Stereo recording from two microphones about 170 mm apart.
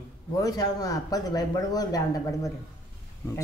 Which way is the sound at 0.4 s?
20° left (ahead or behind).